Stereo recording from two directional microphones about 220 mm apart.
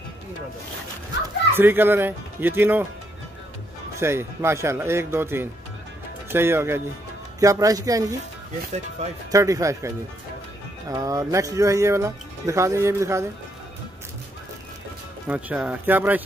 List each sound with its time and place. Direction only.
1.5 s speech: 10° right (ahead or behind)
4.0 s speech: 10° right (ahead or behind)
9.3 s speech: 15° right (ahead or behind)
15.2 s speech: 5° right (ahead or behind)